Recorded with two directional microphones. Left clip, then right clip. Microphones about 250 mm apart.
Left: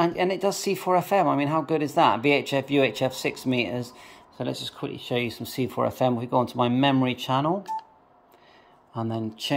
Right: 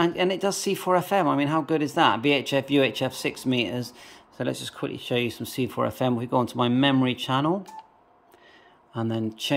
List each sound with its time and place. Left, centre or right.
0.0 s speech: centre
9.0 s speech: centre